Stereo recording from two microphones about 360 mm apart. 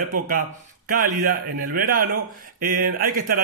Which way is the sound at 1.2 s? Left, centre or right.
Right.